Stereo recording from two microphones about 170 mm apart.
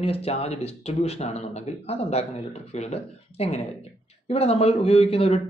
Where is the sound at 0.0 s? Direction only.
35° left (ahead or behind).